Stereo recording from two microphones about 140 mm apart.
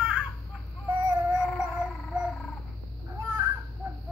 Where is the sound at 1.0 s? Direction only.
20° right (ahead or behind).